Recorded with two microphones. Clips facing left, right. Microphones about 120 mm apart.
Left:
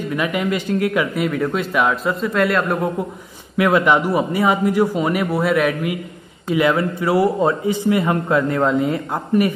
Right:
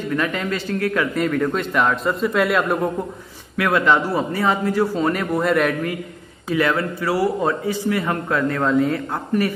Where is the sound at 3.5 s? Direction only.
20° left (ahead or behind).